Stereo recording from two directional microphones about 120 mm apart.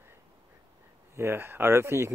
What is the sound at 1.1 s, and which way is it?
Speech, 20° right (ahead or behind).